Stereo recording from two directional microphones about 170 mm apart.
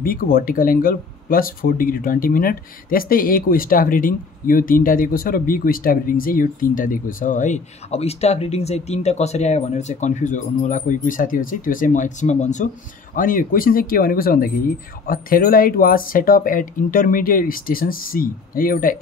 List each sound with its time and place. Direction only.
0.0 s speech: 60° left (ahead or behind); by 12.6 s 45° left (ahead or behind)
13.1 s speech: 55° left (ahead or behind)